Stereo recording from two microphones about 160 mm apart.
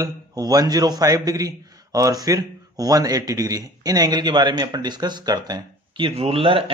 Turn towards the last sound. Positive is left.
turn(degrees=-35)  # may be behind; listen again after turning